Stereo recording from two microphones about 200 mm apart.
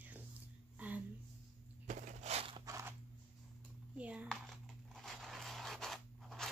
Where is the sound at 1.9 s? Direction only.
35° right (ahead or behind).